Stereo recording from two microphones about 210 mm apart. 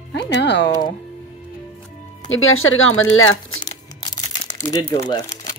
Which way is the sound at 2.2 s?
75° left (ahead or behind).